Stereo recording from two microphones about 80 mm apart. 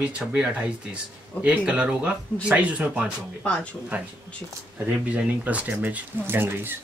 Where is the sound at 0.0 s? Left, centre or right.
Centre.